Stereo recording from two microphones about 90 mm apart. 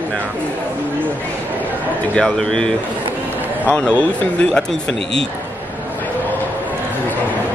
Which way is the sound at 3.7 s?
15° left (ahead or behind).